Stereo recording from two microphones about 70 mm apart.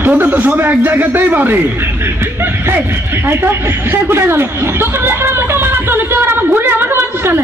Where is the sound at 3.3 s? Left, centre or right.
Right.